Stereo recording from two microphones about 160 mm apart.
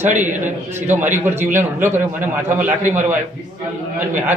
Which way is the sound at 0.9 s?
10° right (ahead or behind).